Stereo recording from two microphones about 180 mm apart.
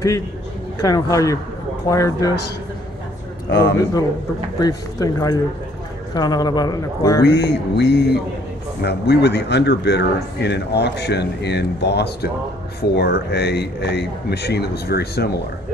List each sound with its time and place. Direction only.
0.7 s a man's voice: 20° left (ahead or behind)
3.4 s a man's voice: 60° left (ahead or behind)
4.6 s a man's voice: 20° left (ahead or behind)
7.2 s speech: 70° left (ahead or behind)